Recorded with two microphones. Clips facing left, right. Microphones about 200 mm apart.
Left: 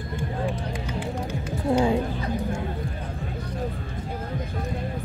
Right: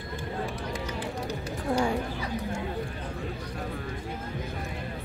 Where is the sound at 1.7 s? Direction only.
25° left (ahead or behind).